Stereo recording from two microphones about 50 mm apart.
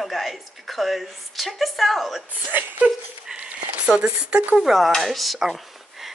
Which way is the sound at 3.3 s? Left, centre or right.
Right.